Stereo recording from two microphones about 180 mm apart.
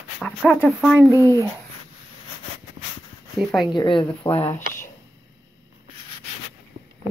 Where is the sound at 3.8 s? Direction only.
25° left (ahead or behind).